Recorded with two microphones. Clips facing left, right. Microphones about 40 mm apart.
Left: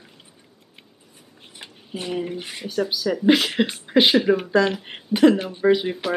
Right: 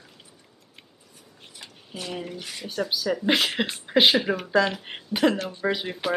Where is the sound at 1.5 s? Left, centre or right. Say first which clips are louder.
Left 5 dB; left.